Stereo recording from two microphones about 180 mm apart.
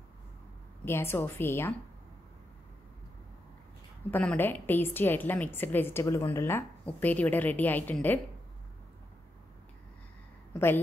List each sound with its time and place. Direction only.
0.8 s a woman's voice: 15° left (ahead or behind)
4.1 s a woman's voice: 10° left (ahead or behind)